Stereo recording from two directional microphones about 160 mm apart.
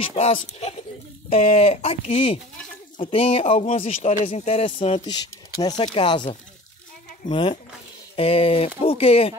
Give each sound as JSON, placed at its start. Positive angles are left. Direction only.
{"t": 0.0, "sound": "speech", "side_deg": 35}
{"t": 5.0, "sound": "speech", "side_deg": 25}